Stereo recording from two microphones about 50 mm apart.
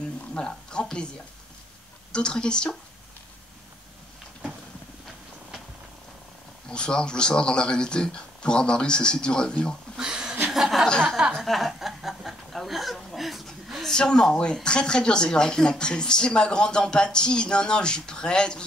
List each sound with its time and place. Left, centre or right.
0.4 s speech: centre
2.1 s speech: centre
6.7 s speech: centre
9.9 s speech: centre
13.8 s speech: centre